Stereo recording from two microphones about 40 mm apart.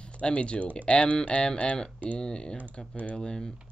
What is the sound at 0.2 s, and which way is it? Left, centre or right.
Speech, left.